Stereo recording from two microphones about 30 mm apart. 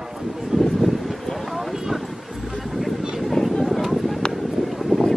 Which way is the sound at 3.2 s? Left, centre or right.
Centre.